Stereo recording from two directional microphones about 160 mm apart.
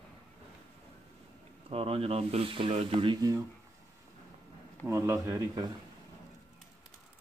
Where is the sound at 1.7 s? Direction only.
35° right (ahead or behind).